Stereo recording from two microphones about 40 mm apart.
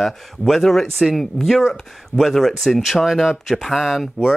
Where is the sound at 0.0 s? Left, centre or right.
Centre.